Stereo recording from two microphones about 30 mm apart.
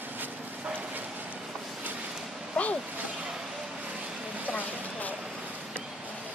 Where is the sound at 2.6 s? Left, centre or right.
Left.